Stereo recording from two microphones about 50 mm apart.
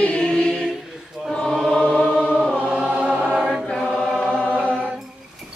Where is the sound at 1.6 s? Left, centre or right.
Centre.